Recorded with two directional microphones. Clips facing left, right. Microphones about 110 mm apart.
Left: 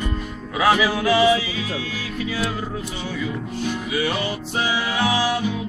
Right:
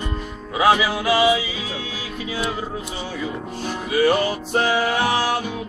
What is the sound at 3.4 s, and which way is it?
Music, 45° right (ahead or behind).